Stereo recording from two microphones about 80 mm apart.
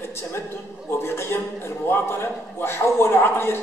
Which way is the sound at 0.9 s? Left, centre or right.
Left.